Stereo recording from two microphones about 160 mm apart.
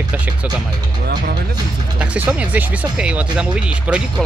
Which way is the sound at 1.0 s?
90° right.